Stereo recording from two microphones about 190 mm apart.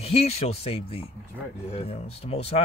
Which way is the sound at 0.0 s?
30° left (ahead or behind).